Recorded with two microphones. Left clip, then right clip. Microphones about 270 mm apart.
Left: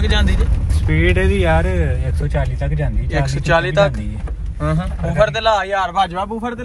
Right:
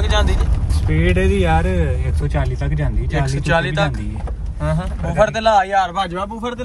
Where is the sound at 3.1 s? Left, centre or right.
Centre.